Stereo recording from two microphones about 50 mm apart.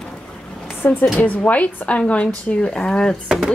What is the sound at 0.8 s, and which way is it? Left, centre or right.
A woman's voice, left.